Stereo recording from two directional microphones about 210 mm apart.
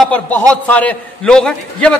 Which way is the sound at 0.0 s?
5° left (ahead or behind).